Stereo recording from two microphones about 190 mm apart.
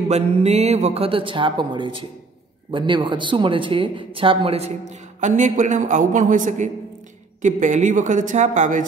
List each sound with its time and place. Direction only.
0.4 s speech: 35° right (ahead or behind)